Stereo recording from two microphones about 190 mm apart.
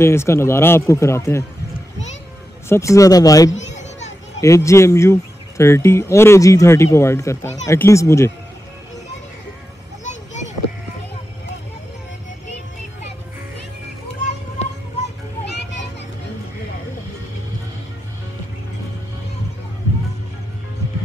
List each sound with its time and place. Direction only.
0.0 s speech: 15° left (ahead or behind)
2.7 s speech: 15° left (ahead or behind)
3.5 s children playing: 35° left (ahead or behind)
4.4 s speech: 15° left (ahead or behind)
10.0 s a sound: 40° left (ahead or behind)